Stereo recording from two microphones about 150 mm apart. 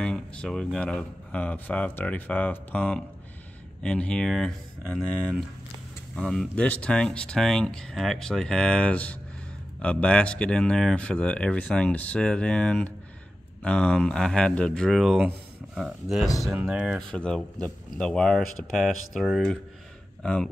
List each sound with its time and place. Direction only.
0.0 s speech: 5° left (ahead or behind)
17.1 s speech: 5° left (ahead or behind)